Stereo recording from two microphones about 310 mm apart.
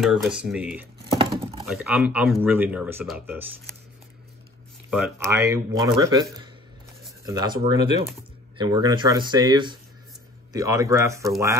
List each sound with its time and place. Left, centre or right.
0.0 s speech: centre
1.1 s a sound: centre
1.7 s speech: centre
4.9 s speech: centre
7.2 s speech: centre
8.5 s speech: centre